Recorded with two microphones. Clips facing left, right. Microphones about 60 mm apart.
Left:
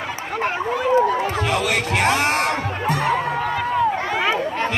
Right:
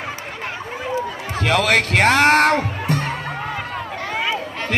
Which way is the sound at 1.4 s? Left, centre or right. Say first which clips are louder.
Right 3 dB; right.